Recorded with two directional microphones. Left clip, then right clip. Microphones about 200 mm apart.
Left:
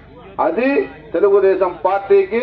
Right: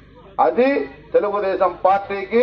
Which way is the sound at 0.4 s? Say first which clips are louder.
Even; 20° right (ahead or behind).